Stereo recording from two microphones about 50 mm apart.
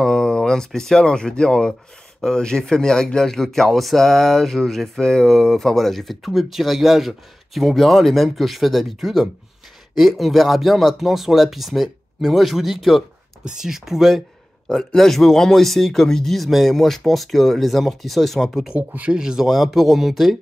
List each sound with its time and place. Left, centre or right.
0.0 s a sound: centre
0.7 s speech: centre
13.4 s speech: centre
18.8 s speech: right
19.1 s speech: centre